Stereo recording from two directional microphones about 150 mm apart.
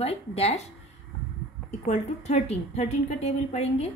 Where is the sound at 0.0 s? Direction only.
45° left (ahead or behind).